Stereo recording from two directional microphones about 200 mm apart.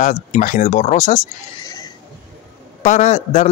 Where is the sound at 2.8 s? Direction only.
35° left (ahead or behind).